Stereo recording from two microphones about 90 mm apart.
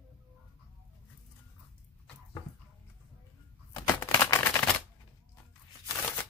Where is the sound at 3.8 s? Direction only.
30° left (ahead or behind).